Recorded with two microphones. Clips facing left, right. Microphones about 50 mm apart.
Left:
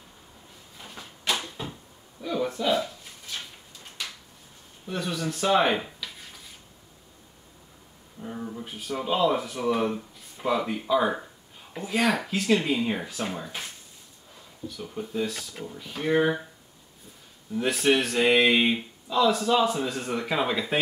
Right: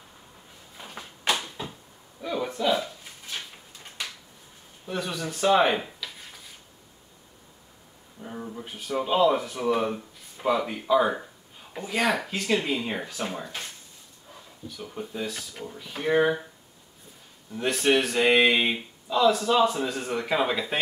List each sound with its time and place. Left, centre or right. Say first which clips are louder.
0.7 s a sound: right 2 dB; centre
2.2 s speech: even; centre
4.8 s speech: left 1 dB; centre
8.2 s a sound: left 2 dB; centre
8.5 s speech: right 6 dB; centre
14.8 s speech: left 3 dB; centre
17.5 s speech: even; centre